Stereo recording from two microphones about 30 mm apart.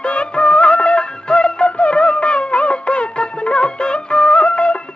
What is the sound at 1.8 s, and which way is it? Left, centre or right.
Music of bollywood, left.